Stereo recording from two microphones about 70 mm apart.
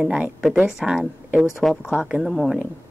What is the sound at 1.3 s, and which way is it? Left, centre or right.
Speech, centre.